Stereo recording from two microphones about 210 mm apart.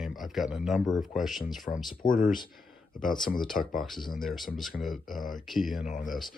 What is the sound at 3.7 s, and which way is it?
Speech, centre (ahead or behind).